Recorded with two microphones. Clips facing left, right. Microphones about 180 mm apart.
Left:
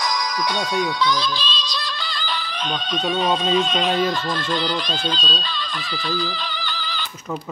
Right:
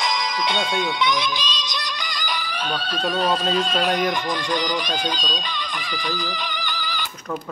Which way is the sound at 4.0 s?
15° right (ahead or behind).